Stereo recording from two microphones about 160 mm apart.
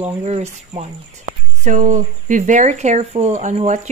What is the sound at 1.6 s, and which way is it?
Speech, 50° right (ahead or behind).